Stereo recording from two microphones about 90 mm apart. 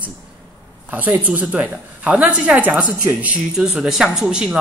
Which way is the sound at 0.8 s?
20° right (ahead or behind).